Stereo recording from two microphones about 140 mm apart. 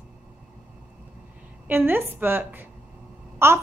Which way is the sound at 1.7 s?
15° right (ahead or behind).